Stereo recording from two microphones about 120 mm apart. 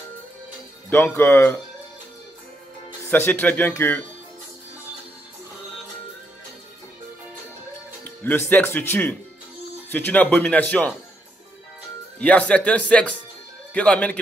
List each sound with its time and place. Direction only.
0.8 s speech: 15° left (ahead or behind)
3.1 s speech: 15° left (ahead or behind)
8.0 s speech: 15° left (ahead or behind)
12.2 s speech: 10° left (ahead or behind)